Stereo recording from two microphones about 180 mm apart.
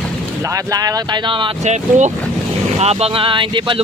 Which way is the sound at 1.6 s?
40° right (ahead or behind).